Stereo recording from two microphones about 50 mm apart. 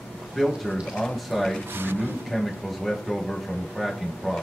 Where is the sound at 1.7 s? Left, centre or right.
Right.